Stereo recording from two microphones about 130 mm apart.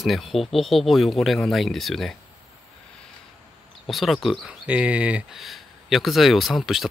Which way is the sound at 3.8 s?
Centre (ahead or behind).